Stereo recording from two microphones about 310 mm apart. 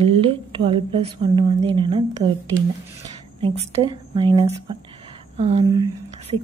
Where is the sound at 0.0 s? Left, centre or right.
Centre.